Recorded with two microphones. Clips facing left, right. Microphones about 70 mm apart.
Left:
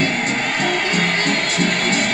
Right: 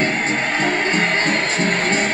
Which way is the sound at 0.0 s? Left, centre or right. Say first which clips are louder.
Even; right.